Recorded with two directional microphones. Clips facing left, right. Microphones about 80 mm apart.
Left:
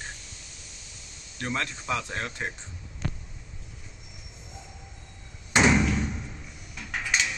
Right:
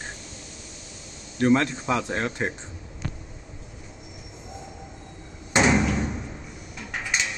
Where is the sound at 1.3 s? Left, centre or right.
Centre.